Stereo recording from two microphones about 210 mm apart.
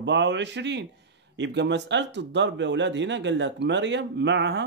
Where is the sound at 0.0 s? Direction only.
55° right (ahead or behind).